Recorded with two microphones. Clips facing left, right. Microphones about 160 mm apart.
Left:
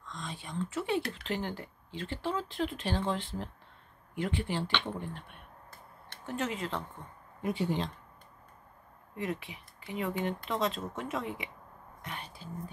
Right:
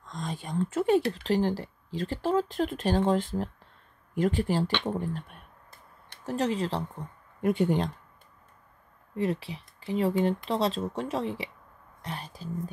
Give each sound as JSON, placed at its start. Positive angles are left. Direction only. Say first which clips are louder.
{"t": 0.0, "sound": "speech", "louder": "right 6 dB", "side_deg": -45}
{"t": 7.4, "sound": "speech", "louder": "right 7 dB", "side_deg": -55}
{"t": 9.1, "sound": "speech", "louder": "right 7 dB", "side_deg": -30}